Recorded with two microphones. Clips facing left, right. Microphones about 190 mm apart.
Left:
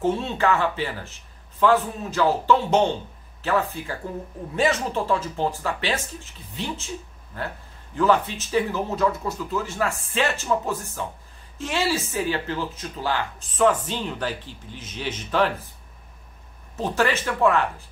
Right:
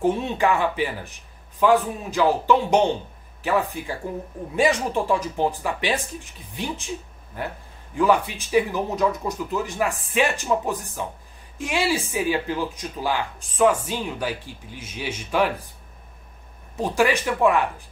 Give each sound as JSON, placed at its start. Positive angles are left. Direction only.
{"t": 0.0, "sound": "speech", "side_deg": -15}
{"t": 16.7, "sound": "speech", "side_deg": -10}